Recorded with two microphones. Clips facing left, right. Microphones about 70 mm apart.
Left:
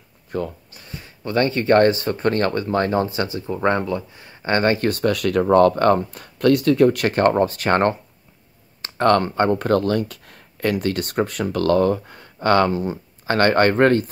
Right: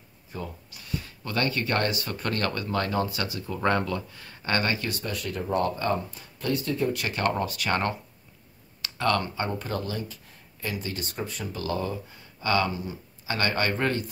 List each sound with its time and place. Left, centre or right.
0.3 s speech: left
0.7 s speech: left
4.7 s speech: left